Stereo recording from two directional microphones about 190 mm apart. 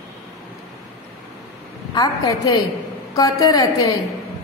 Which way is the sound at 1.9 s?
20° left (ahead or behind).